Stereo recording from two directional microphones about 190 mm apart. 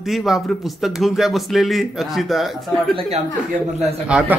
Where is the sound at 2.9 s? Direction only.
35° right (ahead or behind).